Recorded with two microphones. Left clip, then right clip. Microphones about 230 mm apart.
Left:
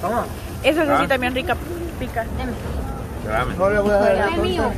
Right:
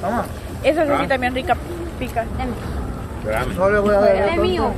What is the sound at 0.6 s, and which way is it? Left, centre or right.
Speech, centre.